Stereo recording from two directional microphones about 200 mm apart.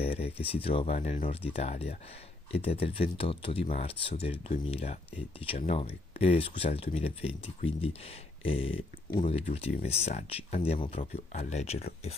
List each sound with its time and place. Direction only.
0.0 s speech: 30° left (ahead or behind)